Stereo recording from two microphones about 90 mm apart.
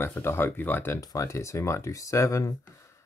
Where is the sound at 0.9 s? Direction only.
40° left (ahead or behind).